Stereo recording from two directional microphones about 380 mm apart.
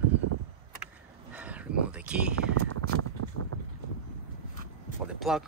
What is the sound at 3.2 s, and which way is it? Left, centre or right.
Boat, right.